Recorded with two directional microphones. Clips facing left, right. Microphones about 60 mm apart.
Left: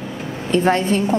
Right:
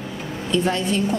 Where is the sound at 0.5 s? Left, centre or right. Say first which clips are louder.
Left 5 dB; left.